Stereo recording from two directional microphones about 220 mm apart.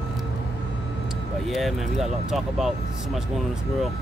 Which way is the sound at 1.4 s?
Centre (ahead or behind).